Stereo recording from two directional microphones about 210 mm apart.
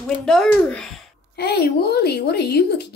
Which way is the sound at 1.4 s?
50° left (ahead or behind).